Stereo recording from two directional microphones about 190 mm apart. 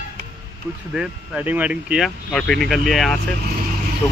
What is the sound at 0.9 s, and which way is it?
Speech, 5° right (ahead or behind).